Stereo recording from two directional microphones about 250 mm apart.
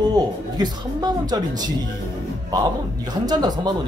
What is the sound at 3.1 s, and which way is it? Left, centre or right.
Speech, centre.